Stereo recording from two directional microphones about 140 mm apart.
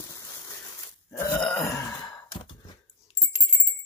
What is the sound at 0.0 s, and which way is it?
Crushing, 20° left (ahead or behind).